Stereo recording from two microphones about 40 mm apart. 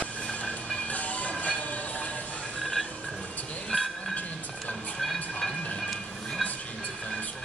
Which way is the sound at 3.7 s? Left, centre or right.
Left.